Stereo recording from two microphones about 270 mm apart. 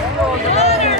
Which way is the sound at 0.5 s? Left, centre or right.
Left.